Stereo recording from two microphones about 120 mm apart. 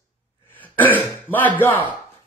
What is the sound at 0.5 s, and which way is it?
Throat clearing, 15° left (ahead or behind).